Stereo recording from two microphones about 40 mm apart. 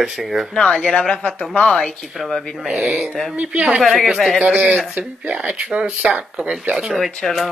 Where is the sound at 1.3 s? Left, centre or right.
Left.